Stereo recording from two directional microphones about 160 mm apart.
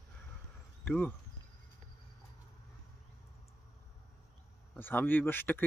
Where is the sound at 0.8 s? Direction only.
5° left (ahead or behind).